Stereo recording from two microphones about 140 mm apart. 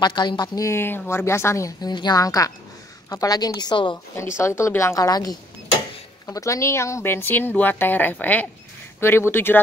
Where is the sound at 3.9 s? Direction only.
20° left (ahead or behind).